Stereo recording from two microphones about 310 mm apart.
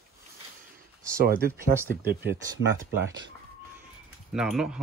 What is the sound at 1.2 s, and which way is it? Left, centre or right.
Speech, right.